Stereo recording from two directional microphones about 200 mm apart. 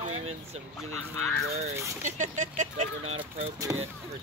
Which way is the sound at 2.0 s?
35° right (ahead or behind).